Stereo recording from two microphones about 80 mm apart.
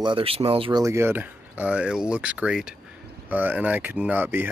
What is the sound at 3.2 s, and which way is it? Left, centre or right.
Speech, right.